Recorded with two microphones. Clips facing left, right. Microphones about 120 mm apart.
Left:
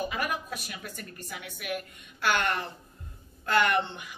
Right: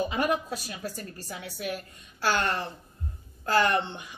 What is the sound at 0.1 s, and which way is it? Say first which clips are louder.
A woman's voice: right 5 dB; 25° right (ahead or behind).